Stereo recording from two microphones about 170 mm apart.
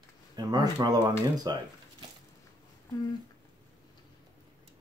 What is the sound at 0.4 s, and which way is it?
Speech, 25° right (ahead or behind).